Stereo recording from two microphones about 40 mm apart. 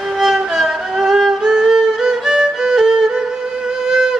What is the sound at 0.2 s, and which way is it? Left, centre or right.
Violin, centre.